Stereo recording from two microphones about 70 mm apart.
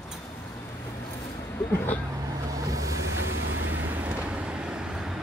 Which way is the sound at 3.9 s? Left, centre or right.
Right.